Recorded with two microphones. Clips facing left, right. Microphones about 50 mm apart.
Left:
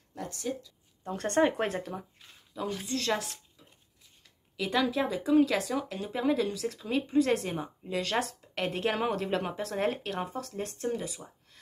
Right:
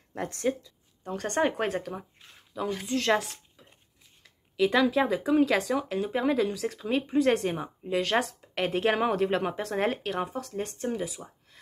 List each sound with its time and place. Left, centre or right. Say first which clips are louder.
0.1 s speech: right 6 dB; right
1.0 s speech: left 1 dB; centre
1.6 s speech: right 2 dB; centre
2.0 s speech: right 1 dB; centre
2.5 s speech: right 3 dB; centre
3.2 s a sound: right 5 dB; centre
4.2 s speech: right 10 dB; centre
10.9 s speech: right 2 dB; centre